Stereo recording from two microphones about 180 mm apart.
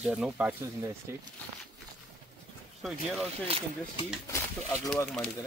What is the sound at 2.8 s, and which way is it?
Speech, centre (ahead or behind).